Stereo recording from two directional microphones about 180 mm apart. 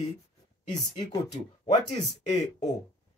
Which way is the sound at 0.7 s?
25° left (ahead or behind).